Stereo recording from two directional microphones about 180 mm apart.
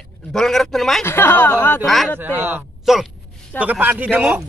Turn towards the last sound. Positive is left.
turn(degrees=-5)  # may be behind; listen again after turning